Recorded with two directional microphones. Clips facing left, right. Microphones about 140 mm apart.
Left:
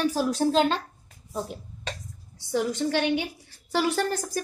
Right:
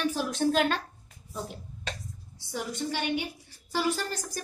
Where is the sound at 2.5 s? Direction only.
80° left.